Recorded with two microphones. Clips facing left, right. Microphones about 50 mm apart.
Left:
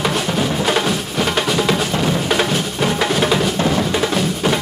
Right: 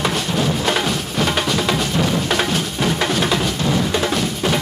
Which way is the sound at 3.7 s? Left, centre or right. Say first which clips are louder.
Left 1 dB; centre.